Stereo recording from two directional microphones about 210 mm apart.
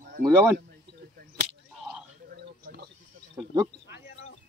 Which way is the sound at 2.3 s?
50° right (ahead or behind).